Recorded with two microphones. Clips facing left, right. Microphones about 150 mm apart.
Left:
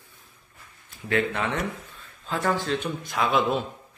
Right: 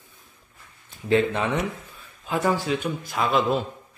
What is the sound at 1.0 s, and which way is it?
A man's voice, 20° right (ahead or behind).